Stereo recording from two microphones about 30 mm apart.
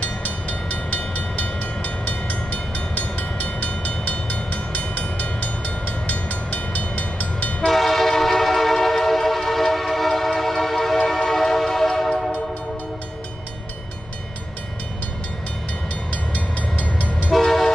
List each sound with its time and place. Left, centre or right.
0.0 s train: left
0.9 s train: left
7.6 s train: centre
16.1 s train: left
17.3 s train: centre